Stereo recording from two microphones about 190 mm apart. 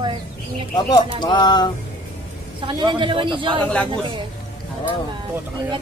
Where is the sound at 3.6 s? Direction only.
5° left (ahead or behind).